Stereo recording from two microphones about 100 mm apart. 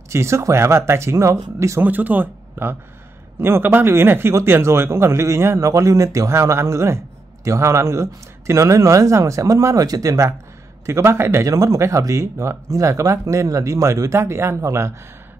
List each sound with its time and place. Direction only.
0.1 s speech: 30° right (ahead or behind)
1.9 s speech: 15° right (ahead or behind)